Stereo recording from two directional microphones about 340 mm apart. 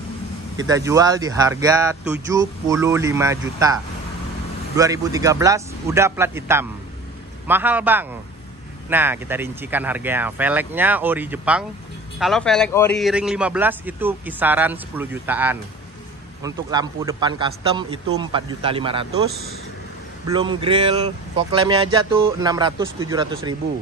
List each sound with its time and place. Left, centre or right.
0.6 s speech: centre
20.2 s speech: centre